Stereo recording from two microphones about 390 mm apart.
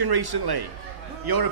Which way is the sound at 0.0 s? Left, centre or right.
Right.